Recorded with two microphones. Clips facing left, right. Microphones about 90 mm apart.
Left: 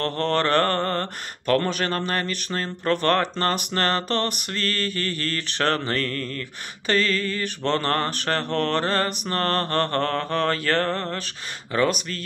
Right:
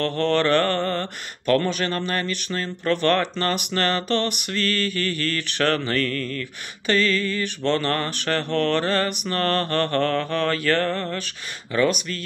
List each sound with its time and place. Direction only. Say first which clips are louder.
0.0 s mantra: right 2 dB; 40° left (ahead or behind)